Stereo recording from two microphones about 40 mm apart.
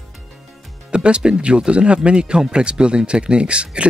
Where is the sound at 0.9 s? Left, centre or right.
Right.